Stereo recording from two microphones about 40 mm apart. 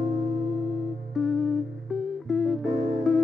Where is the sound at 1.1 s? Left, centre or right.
Centre.